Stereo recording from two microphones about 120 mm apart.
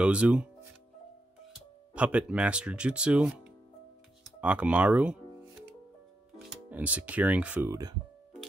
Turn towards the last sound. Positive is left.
turn(degrees=-30)  # may be behind; listen again after turning